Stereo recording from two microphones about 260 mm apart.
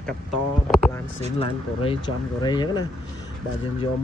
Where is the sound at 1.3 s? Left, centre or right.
Left.